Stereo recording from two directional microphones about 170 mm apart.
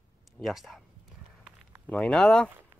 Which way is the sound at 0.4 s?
Centre (ahead or behind).